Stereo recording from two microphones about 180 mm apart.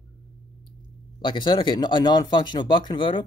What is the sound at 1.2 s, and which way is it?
Speech, 25° left (ahead or behind).